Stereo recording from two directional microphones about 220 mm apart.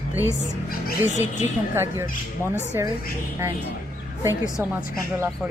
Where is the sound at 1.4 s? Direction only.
10° right (ahead or behind).